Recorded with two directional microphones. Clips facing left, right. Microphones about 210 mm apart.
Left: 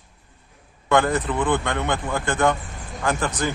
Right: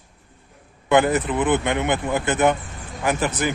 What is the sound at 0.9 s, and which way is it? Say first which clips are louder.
Speech: right 2 dB; 20° right (ahead or behind).